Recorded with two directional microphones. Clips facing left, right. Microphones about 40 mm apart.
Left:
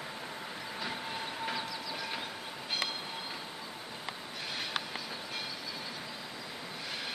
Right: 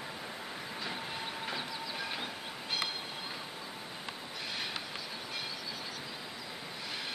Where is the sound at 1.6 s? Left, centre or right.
Centre.